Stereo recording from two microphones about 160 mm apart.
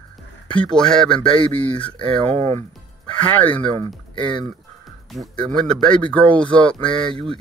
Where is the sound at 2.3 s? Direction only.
40° right (ahead or behind).